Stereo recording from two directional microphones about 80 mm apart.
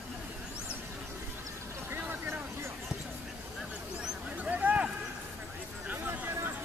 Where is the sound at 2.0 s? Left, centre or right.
Right.